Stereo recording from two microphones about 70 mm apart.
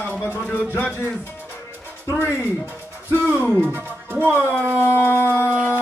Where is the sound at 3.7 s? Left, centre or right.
Right.